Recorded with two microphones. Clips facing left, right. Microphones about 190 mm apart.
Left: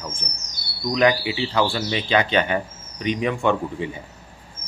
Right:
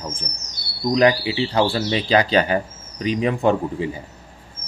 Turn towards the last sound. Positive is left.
turn(degrees=-35)  # may be behind; listen again after turning